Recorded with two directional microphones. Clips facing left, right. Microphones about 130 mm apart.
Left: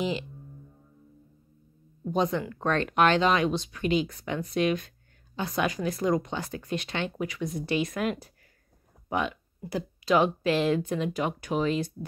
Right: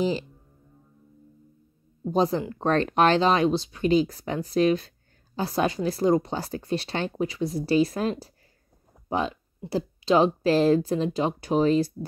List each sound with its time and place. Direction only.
2.0 s speech: 35° right (ahead or behind)